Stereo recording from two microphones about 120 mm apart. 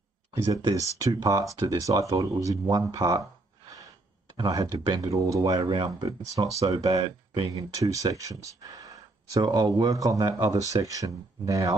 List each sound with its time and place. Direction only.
0.7 s speech: 30° right (ahead or behind)
4.4 s speech: 30° right (ahead or behind)